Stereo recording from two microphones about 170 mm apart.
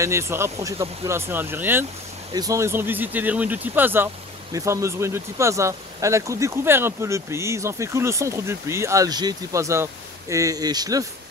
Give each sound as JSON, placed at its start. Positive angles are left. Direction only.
{"t": 0.0, "sound": "speech", "side_deg": -15}